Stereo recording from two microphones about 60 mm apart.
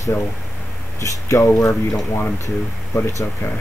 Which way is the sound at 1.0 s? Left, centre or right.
Left.